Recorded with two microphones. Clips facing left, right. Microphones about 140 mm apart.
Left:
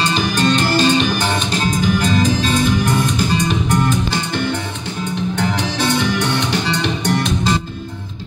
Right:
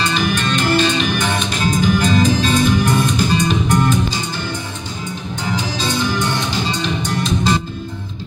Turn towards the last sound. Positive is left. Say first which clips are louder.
# left 2 dB
turn(degrees=65)  # may be behind; listen again after turning